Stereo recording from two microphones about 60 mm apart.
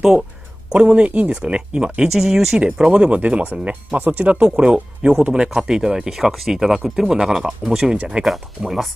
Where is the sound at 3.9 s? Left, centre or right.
Right.